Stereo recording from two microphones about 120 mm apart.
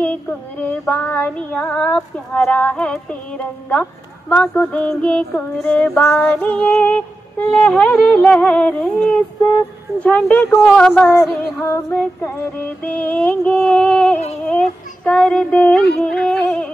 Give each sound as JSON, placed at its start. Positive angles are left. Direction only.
{"t": 0.0, "sound": "female singing", "side_deg": 10}
{"t": 4.3, "sound": "female singing", "side_deg": 10}
{"t": 9.9, "sound": "female singing", "side_deg": 15}
{"t": 10.5, "sound": "speech", "side_deg": 0}
{"t": 11.1, "sound": "music", "side_deg": 20}
{"t": 12.8, "sound": "female singing", "side_deg": 10}